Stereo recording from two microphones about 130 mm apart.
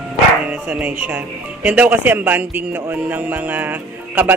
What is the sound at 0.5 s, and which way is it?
Speech, 10° right (ahead or behind).